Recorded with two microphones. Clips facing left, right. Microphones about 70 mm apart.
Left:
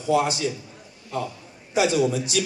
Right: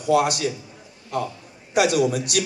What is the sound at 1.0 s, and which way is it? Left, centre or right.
Speech, right.